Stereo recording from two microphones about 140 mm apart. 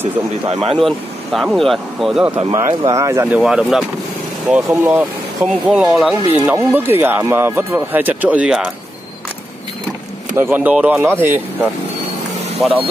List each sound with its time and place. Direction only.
0.7 s speech: centre (ahead or behind)
2.5 s speech: 25° right (ahead or behind)
3.3 s speech: 5° right (ahead or behind)
4.5 s speech: 15° right (ahead or behind)
5.4 s speech: 5° right (ahead or behind)
6.4 s speech: 15° right (ahead or behind)
10.3 s speech: 15° right (ahead or behind)
12.6 s speech: 5° left (ahead or behind)